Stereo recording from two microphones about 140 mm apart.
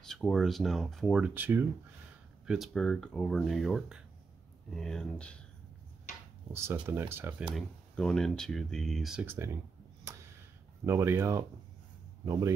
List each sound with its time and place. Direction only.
0.0 s speech: 5° left (ahead or behind); by 1.7 s 15° right (ahead or behind)
2.4 s speech: 5° right (ahead or behind)
6.5 s speech: 15° right (ahead or behind)
7.5 s speech: 5° left (ahead or behind)
9.2 s speech: 15° right (ahead or behind)
10.9 s speech: 20° right (ahead or behind)